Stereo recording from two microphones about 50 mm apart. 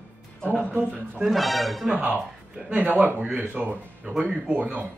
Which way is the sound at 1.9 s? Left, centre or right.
Right.